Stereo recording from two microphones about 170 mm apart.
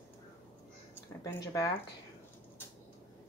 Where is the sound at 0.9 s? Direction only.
15° left (ahead or behind).